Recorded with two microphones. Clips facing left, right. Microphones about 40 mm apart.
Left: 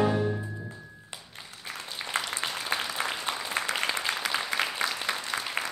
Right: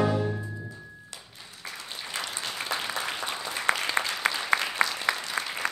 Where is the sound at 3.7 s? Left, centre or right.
Right.